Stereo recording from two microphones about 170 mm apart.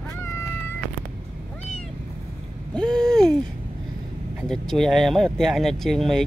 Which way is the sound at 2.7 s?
5° left (ahead or behind).